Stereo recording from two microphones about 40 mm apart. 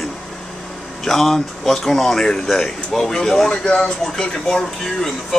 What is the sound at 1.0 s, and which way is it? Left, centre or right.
Speech, centre.